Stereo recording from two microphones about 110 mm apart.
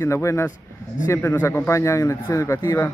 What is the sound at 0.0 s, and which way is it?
A man's voice, 25° left (ahead or behind).